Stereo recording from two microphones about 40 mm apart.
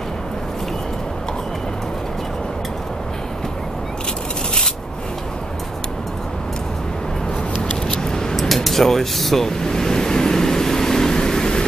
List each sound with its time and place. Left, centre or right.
7.9 s a sound: centre
8.4 s speech: centre
9.5 s vehicle: centre